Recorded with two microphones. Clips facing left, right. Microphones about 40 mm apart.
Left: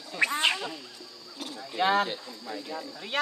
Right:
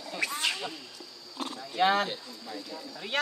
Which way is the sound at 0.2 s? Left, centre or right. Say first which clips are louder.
Left 6 dB; left.